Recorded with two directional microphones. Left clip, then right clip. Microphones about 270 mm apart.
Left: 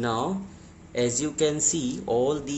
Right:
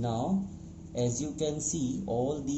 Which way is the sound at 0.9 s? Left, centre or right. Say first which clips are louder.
Left 7 dB; left.